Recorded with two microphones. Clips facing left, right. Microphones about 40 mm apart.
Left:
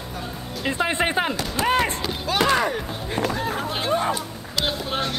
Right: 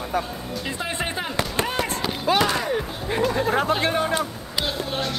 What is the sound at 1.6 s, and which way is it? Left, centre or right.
Run, left.